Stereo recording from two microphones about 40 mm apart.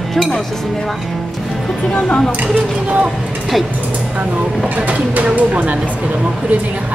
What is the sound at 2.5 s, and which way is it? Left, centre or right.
Speech, right.